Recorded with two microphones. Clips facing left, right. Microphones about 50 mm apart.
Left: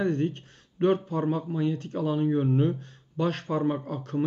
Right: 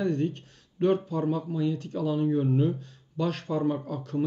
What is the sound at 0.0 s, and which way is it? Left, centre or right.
Speech, left.